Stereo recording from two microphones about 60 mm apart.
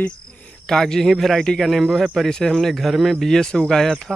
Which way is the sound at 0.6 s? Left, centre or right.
Centre.